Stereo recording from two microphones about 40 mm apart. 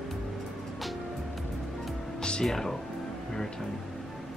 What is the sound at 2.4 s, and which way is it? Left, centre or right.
Speech, centre.